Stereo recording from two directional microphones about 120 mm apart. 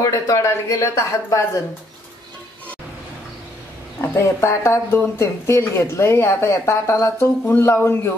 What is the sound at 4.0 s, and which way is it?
Speech, 25° left (ahead or behind).